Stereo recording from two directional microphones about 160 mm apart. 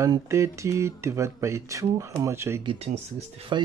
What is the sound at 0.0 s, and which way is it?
Speech, 20° right (ahead or behind).